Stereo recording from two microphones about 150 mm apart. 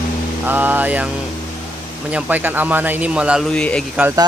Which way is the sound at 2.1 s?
10° right (ahead or behind).